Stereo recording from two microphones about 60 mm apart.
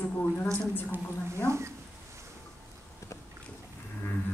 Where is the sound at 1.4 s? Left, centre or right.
Right.